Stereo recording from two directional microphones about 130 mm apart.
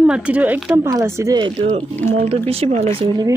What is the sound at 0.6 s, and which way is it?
Speech, 25° right (ahead or behind).